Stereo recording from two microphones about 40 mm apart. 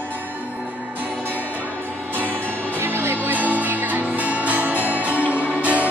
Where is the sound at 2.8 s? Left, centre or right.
Right.